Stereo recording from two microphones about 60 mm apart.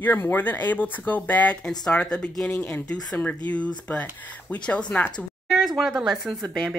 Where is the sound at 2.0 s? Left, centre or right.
Centre.